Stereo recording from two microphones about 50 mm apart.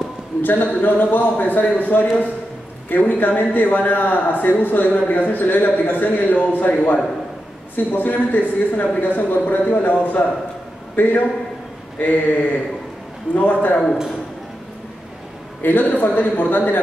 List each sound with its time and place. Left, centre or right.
0.4 s a man's voice: left
15.6 s a man's voice: left